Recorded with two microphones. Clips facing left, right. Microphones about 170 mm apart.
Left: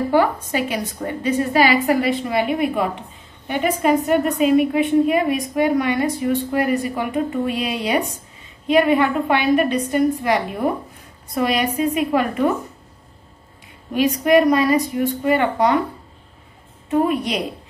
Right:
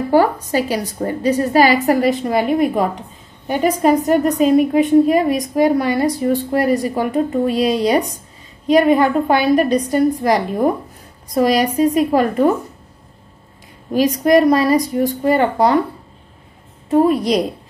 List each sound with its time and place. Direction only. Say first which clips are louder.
0.1 s a woman's voice: right 6 dB; 40° right (ahead or behind)
13.9 s a woman's voice: right 2 dB; 35° right (ahead or behind)
16.9 s a woman's voice: right 5 dB; 35° right (ahead or behind)